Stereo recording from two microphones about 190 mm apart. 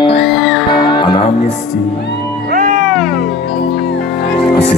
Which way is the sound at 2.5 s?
45° right (ahead or behind).